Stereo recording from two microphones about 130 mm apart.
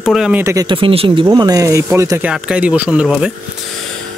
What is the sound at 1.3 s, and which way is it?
Speech, 30° right (ahead or behind).